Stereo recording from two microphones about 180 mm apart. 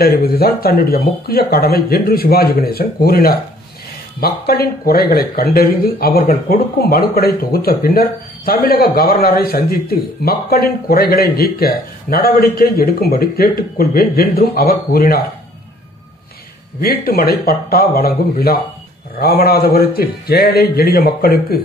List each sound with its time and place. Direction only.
0.0 s speech: 60° left (ahead or behind)
16.8 s speech: 55° left (ahead or behind)